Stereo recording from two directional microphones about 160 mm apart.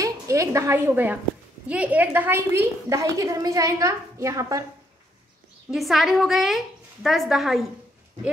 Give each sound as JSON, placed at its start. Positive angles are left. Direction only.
{"t": 0.0, "sound": "a woman's voice", "side_deg": -20}
{"t": 5.7, "sound": "a woman's voice", "side_deg": 0}